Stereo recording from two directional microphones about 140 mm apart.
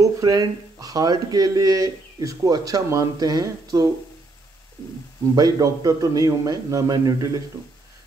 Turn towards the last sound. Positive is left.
turn(degrees=-25)  # may be behind; listen again after turning